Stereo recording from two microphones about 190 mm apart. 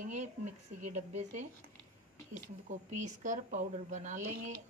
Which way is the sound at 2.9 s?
40° right (ahead or behind).